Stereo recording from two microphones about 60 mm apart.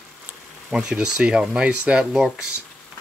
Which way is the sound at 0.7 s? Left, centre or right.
Centre.